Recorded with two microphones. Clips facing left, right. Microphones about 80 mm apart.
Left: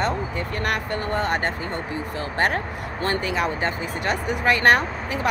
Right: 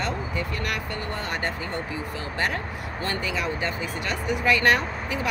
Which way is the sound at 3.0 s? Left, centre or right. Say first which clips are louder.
Left 5 dB; left.